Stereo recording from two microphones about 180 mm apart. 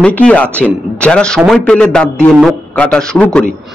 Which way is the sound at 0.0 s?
5° left (ahead or behind).